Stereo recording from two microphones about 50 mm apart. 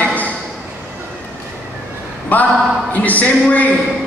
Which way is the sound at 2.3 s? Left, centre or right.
Left.